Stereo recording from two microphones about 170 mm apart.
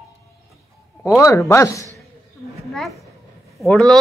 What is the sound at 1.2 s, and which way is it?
Speech, 15° left (ahead or behind).